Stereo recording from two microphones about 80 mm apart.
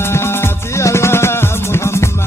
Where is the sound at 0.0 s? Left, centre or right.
Left.